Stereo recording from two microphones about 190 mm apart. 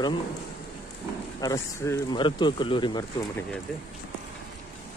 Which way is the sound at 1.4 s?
15° left (ahead or behind).